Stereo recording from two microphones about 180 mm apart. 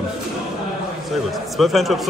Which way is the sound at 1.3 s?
Centre (ahead or behind).